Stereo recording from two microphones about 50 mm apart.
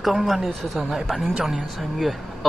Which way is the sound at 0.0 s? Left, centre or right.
Centre.